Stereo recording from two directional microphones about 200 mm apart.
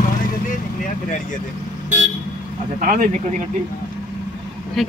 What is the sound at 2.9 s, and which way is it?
Speech, 40° right (ahead or behind).